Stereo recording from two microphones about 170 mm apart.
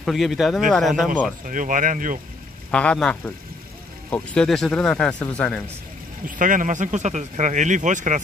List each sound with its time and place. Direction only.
0.0 s speech: centre (ahead or behind)
1.4 s speech: 50° right (ahead or behind)
2.7 s speech: 5° left (ahead or behind)
6.2 s speech: 50° right (ahead or behind)